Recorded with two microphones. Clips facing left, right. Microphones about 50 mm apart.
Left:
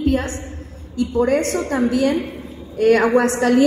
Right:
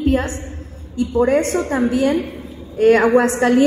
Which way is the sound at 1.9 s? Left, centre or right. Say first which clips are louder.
Right 1 dB; right.